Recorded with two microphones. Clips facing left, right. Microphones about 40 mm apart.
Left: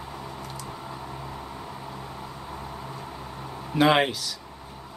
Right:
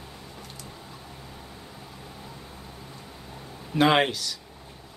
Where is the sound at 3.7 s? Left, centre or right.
Centre.